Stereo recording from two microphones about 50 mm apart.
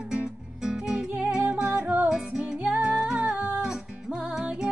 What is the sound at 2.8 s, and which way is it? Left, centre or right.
Music, centre.